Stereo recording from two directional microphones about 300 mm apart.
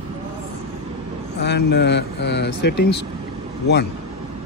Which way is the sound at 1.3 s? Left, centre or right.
Left.